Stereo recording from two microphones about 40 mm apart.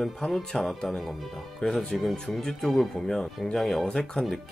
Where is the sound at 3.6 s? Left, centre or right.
Centre.